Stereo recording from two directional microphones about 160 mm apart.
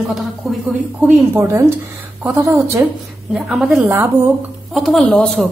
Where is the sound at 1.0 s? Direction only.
15° right (ahead or behind).